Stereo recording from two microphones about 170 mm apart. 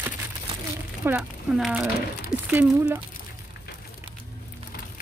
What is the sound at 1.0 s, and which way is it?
Speech, 10° right (ahead or behind).